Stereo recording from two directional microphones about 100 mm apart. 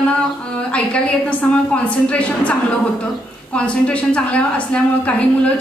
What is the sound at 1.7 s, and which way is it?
Speech, 15° left (ahead or behind).